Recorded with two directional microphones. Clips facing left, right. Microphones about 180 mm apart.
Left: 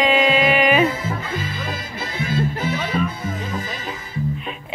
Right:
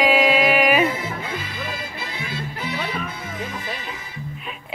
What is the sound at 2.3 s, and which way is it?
Music, 45° left (ahead or behind).